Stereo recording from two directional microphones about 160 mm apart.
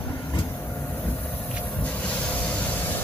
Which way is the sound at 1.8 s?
10° left (ahead or behind).